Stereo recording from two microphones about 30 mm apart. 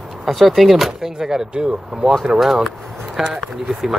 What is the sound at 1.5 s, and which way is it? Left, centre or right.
Speech, right.